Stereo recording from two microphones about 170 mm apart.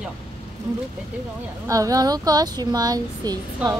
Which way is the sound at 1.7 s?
20° right (ahead or behind).